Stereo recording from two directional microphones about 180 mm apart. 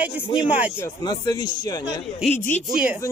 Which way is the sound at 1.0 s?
25° left (ahead or behind).